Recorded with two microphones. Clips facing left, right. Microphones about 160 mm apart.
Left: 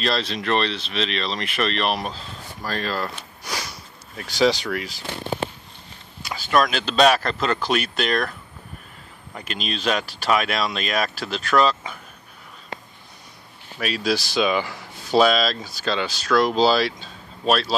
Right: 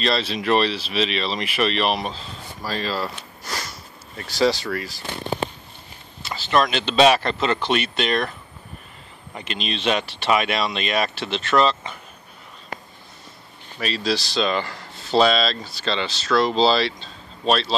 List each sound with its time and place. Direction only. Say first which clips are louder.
0.0 s speech: right 2 dB; centre (ahead or behind)
3.4 s sniff: even; centre (ahead or behind)
4.2 s speech: left 1 dB; centre (ahead or behind)
6.5 s speech: right 1 dB; 5° left (ahead or behind)
13.7 s speech: left 1 dB; 5° left (ahead or behind)